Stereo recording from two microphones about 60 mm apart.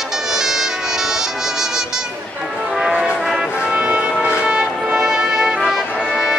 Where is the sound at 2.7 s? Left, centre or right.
Centre.